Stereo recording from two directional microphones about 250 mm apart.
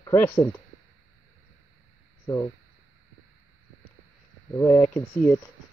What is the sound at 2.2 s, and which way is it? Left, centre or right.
Speech, centre.